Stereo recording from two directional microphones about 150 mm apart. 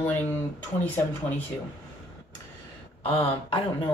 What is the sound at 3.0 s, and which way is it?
Speech, 40° left (ahead or behind).